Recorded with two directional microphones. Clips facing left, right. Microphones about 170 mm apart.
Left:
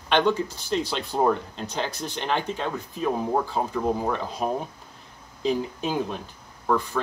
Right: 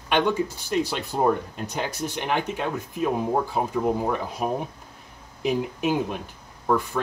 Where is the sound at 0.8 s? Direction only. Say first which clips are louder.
Left 2 dB; 10° right (ahead or behind).